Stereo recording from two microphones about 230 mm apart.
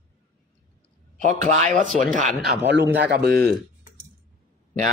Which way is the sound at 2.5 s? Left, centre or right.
Right.